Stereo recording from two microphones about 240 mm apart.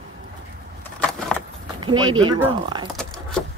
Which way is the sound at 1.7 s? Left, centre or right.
Centre.